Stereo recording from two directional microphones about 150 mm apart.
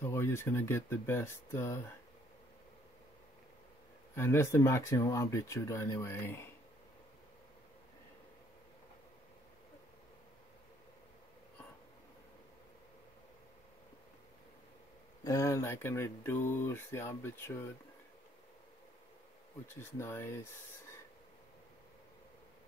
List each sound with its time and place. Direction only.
0.0 s speech: 15° left (ahead or behind)
4.1 s speech: 15° left (ahead or behind)
15.2 s speech: 20° left (ahead or behind)
19.7 s speech: 15° left (ahead or behind)